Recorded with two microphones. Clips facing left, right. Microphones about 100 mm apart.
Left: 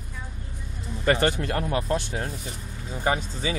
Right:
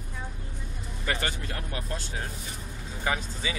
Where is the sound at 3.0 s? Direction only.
35° left (ahead or behind).